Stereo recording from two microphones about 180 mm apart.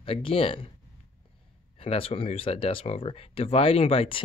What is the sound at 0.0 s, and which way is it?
Speech, 30° left (ahead or behind).